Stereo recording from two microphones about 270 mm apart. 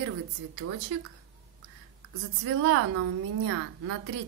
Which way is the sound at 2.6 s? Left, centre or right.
Right.